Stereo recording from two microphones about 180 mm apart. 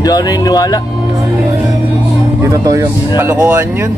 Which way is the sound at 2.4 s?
20° right (ahead or behind).